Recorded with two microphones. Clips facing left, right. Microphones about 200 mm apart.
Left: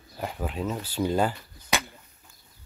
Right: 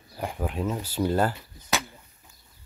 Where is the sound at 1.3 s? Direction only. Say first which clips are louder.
Even; centre (ahead or behind).